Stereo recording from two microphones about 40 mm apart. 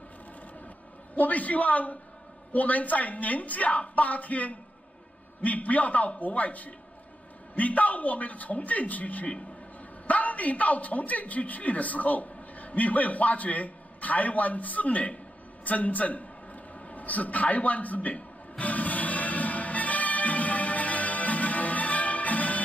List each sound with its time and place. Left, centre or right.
1.1 s a man's voice: left
16.9 s music: left